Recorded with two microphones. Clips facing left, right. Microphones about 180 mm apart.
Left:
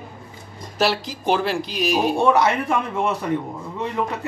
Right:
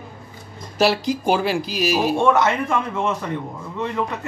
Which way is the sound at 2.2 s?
15° left (ahead or behind).